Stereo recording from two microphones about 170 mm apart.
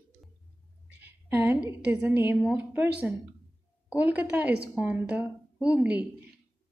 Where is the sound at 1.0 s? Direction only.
10° right (ahead or behind).